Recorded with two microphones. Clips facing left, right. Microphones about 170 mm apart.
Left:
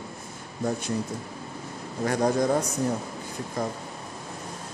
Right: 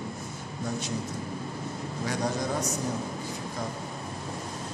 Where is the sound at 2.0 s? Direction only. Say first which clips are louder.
Left 7 dB; 55° left (ahead or behind).